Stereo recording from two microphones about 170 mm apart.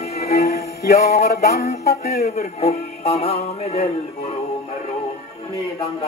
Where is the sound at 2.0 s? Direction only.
70° left (ahead or behind).